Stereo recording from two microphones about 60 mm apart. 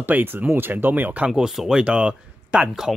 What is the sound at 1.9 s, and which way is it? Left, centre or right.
Speech, centre.